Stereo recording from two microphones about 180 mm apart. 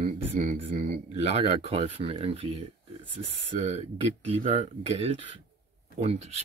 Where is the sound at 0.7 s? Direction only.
40° right (ahead or behind).